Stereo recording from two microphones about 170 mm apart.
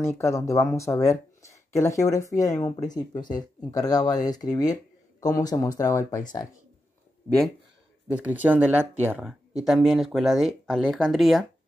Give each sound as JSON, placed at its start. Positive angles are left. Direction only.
{"t": 0.0, "sound": "speech", "side_deg": 15}
{"t": 8.1, "sound": "speech", "side_deg": -10}